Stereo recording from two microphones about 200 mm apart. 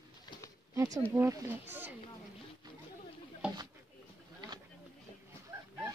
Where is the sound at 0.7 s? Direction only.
15° right (ahead or behind).